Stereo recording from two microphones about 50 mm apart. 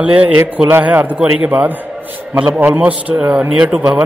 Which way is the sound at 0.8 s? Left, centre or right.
Right.